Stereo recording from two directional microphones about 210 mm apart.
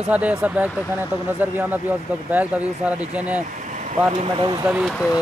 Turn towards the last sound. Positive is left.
turn(degrees=-10)  # may be behind; listen again after turning